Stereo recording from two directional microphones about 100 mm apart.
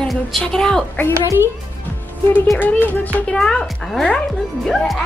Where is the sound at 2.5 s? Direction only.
15° left (ahead or behind).